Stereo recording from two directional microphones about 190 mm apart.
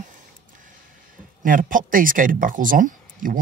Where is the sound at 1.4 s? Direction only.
45° right (ahead or behind).